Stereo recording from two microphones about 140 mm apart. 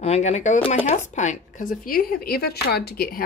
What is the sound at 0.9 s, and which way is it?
Speech, 60° left (ahead or behind).